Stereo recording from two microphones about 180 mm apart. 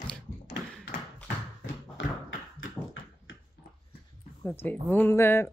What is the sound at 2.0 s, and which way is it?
Tap, 90° left.